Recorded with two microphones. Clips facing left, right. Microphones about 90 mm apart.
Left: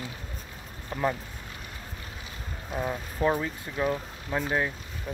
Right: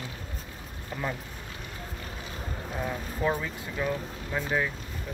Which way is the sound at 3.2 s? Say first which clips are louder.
Left 3 dB; 20° left (ahead or behind).